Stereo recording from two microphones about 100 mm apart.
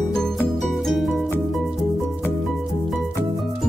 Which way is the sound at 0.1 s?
5° left (ahead or behind).